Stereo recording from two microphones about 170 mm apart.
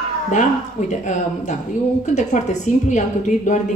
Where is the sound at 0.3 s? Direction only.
45° left (ahead or behind).